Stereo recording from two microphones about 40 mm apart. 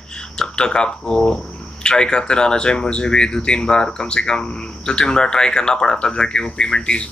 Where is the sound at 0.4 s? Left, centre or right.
Left.